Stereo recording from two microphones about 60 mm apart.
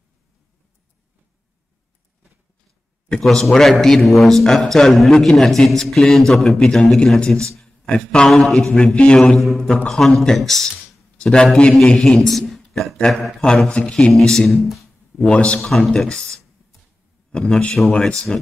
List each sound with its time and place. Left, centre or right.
3.1 s a man's voice: centre
9.8 s a man's voice: centre
15.2 s a man's voice: centre
15.6 s a man's voice: centre